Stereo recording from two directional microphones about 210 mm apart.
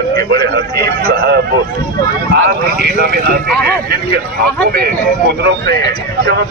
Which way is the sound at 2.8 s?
45° right (ahead or behind).